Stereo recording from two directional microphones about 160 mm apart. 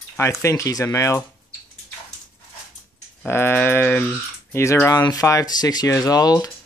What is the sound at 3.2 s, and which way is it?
Speech, 15° left (ahead or behind).